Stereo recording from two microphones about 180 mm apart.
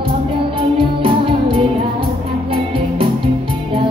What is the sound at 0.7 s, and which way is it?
Music, 30° right (ahead or behind).